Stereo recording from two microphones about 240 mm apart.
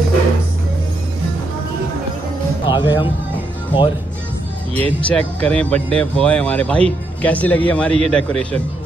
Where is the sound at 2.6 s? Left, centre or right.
Centre.